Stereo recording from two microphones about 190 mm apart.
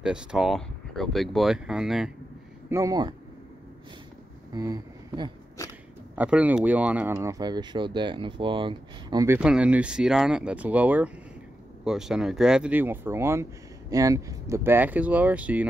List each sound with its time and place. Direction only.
0.0 s speech: 5° right (ahead or behind)
2.7 s speech: 20° right (ahead or behind)
4.6 s speech: 20° right (ahead or behind)
6.1 s speech: 10° right (ahead or behind)